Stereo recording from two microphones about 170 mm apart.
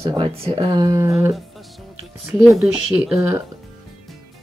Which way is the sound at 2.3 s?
Centre (ahead or behind).